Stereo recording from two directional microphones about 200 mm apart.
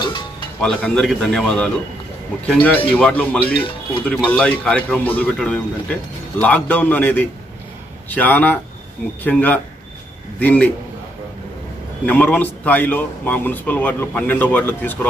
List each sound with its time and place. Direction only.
0.0 s music: 25° left (ahead or behind)
0.6 s a man's voice: 5° left (ahead or behind)
12.1 s a man's voice: 5° left (ahead or behind)